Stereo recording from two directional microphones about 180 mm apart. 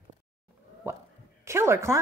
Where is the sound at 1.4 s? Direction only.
15° right (ahead or behind).